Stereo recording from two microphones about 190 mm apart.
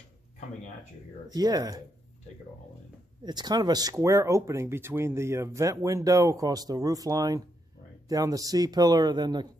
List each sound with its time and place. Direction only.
1.3 s speech: 20° right (ahead or behind)
3.3 s speech: 20° right (ahead or behind)